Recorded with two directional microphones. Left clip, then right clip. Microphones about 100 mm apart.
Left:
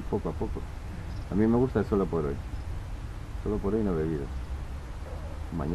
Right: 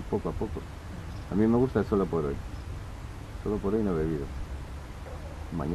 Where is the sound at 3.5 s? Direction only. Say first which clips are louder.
Even; 5° right (ahead or behind).